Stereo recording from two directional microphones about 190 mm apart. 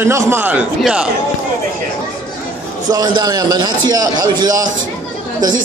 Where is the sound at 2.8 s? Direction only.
20° right (ahead or behind).